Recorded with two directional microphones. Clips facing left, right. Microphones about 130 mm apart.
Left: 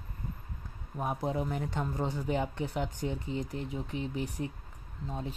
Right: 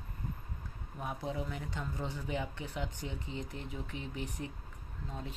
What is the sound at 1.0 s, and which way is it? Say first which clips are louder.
Speech: left 6 dB; 45° left (ahead or behind).